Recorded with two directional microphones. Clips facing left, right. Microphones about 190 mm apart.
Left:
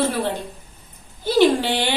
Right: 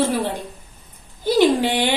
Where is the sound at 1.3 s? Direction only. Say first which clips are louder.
Even; 15° right (ahead or behind).